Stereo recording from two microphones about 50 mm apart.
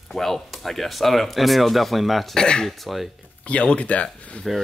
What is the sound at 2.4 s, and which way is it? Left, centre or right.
Speech, centre.